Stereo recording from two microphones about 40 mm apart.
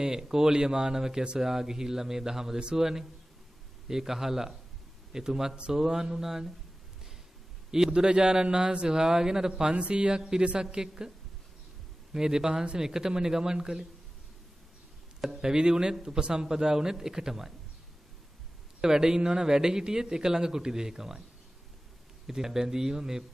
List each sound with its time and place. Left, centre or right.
0.0 s speech: centre
7.7 s a man's voice: centre
12.1 s speech: centre
15.3 s speech: right
18.8 s speech: centre
22.2 s speech: centre